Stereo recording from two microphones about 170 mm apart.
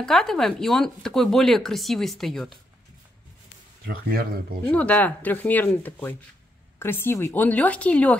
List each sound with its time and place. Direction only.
0.0 s speech: centre (ahead or behind)
3.8 s speech: 65° right (ahead or behind)
4.6 s speech: 10° left (ahead or behind)